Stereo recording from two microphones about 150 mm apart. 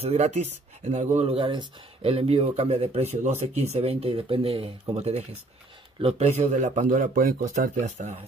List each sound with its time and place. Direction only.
0.0 s a man's voice: 45° right (ahead or behind)